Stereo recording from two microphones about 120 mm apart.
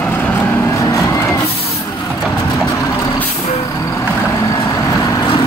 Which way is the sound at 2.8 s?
30° left (ahead or behind).